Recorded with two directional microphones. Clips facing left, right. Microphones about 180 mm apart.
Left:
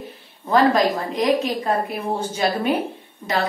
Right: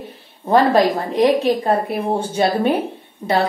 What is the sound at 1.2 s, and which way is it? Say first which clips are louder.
A woman's voice: right 5 dB; 30° right (ahead or behind).